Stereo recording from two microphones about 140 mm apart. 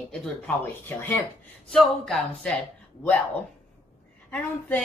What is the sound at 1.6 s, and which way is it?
Speech, centre (ahead or behind).